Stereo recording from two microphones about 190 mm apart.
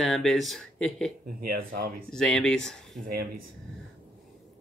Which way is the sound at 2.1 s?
5° left (ahead or behind).